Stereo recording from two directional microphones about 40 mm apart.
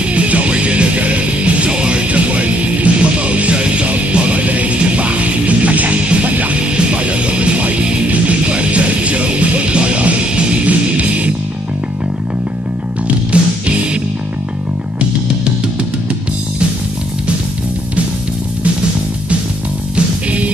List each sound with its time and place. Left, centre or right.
0.1 s music: right
13.3 s music: right
20.2 s music: right